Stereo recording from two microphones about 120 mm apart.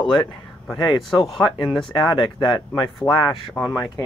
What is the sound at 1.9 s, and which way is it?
Speech, 40° left (ahead or behind).